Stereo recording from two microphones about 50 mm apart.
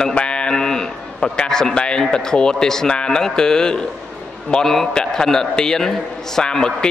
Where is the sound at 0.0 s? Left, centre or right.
Left.